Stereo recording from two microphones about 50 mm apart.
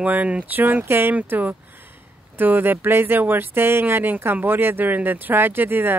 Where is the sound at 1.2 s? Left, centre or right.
Right.